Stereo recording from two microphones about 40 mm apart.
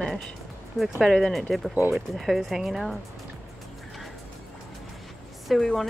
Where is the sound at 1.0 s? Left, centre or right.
Centre.